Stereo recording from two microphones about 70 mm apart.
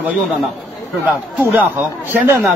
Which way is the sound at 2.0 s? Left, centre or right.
Right.